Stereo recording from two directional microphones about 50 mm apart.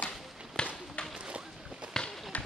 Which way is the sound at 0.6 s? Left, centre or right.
Centre.